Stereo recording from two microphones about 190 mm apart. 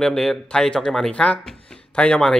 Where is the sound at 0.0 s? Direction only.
Centre (ahead or behind).